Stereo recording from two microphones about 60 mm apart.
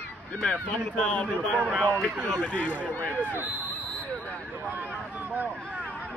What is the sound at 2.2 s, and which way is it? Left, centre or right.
Speech, centre.